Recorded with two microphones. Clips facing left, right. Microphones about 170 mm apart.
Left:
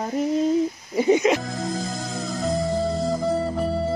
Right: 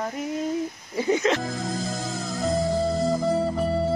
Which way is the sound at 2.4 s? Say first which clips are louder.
Even; centre (ahead or behind).